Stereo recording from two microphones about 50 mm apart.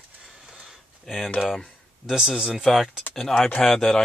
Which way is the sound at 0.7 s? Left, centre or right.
Centre.